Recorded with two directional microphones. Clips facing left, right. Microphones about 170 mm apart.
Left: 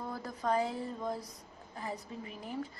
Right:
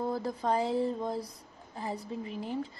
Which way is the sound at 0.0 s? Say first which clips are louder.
Right 6 dB; 30° right (ahead or behind).